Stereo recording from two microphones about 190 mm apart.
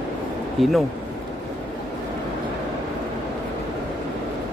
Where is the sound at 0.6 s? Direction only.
Centre (ahead or behind).